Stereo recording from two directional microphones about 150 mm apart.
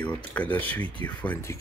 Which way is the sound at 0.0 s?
10° left (ahead or behind).